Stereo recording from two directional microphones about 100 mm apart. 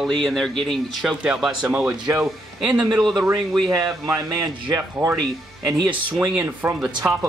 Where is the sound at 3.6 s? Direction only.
35° right (ahead or behind).